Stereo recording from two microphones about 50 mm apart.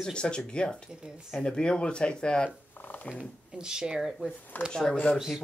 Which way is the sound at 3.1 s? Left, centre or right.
Right.